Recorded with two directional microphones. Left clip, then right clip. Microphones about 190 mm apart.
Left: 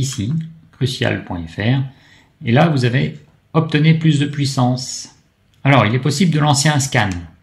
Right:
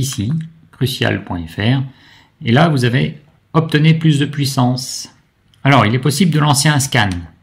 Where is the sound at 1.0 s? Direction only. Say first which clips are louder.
Right 2 dB; 25° right (ahead or behind).